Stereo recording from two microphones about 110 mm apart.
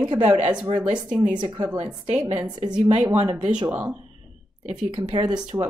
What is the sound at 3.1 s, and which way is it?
Speech, 80° right.